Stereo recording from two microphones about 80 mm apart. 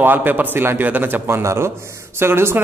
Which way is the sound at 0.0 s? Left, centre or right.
Right.